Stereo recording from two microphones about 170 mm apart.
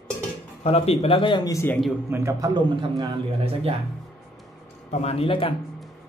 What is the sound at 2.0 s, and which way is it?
A man's voice, 15° right (ahead or behind).